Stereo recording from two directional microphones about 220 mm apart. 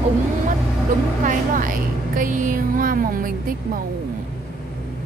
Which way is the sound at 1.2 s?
40° right (ahead or behind).